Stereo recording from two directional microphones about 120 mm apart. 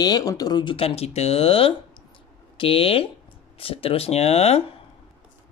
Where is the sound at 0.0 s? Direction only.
30° left (ahead or behind).